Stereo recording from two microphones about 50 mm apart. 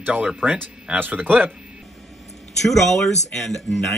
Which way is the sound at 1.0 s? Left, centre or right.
Right.